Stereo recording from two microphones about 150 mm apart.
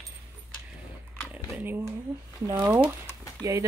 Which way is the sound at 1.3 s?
10° right (ahead or behind).